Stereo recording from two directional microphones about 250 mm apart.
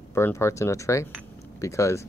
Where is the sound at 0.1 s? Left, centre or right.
Centre.